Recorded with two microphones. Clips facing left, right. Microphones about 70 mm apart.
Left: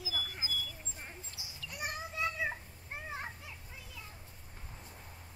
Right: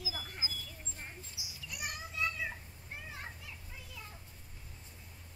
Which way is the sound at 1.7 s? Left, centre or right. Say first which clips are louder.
Left 3 dB; left.